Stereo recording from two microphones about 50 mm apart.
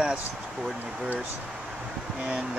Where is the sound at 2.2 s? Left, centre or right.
Centre.